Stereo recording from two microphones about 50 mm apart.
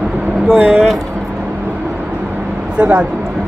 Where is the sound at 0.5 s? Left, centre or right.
Right.